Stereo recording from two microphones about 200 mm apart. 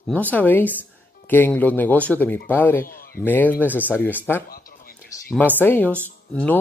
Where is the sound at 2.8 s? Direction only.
45° left (ahead or behind).